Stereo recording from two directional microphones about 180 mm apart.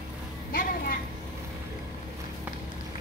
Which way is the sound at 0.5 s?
50° left (ahead or behind).